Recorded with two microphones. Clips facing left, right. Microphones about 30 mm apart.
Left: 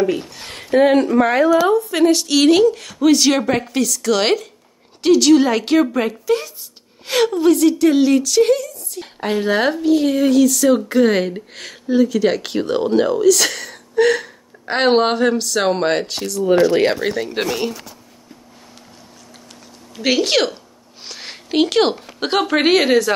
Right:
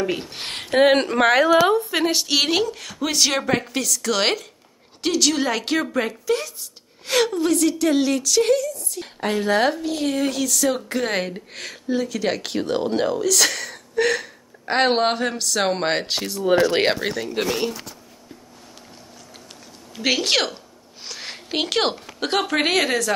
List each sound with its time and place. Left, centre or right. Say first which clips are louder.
0.0 s speech: left 6 dB; centre
0.7 s speech: left 3 dB; right
1.6 s a woman's voice: left 2 dB; right
1.9 s speech: left 6 dB; centre
16.1 s speech: left 3 dB; right
17.0 s speech: left 5 dB; centre
17.5 s a woman's voice: left 2 dB; centre
20.0 s a sound: left 4 dB; centre
22.4 s a woman's voice: left 6 dB; centre